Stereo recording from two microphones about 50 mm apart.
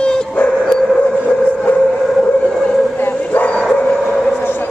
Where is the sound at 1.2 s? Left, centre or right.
Left.